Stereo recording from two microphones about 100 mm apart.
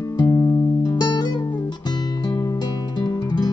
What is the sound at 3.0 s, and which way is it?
Music, 45° left (ahead or behind).